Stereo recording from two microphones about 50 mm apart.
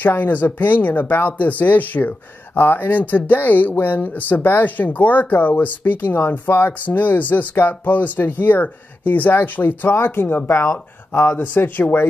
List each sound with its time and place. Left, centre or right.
0.0 s speech: left
2.5 s speech: left
10.5 s speech: left